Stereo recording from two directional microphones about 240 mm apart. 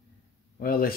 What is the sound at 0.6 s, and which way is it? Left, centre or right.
Speech, left.